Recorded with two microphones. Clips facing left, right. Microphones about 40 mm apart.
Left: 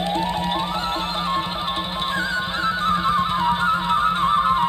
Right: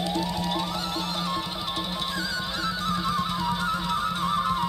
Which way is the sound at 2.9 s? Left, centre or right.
Left.